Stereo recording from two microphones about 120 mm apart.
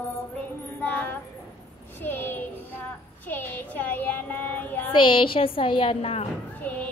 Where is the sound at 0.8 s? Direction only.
10° left (ahead or behind).